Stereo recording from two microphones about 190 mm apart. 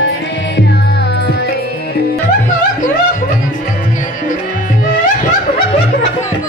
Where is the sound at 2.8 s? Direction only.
45° left (ahead or behind).